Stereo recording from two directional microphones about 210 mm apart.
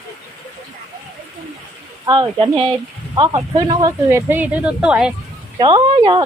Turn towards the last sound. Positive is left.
turn(degrees=-25)  # may be behind; listen again after turning